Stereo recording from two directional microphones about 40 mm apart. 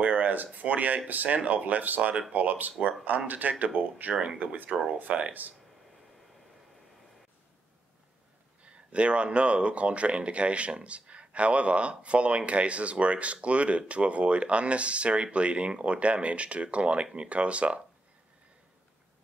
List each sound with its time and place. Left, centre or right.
0.0 s speech: right
2.0 s speech: right
2.3 s speech: right
4.7 s speech: centre
5.0 s speech: right
8.9 s speech: right